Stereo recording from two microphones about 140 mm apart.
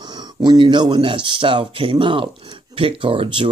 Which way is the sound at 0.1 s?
30° right (ahead or behind).